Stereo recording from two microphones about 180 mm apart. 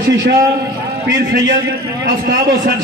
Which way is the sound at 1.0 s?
90° right.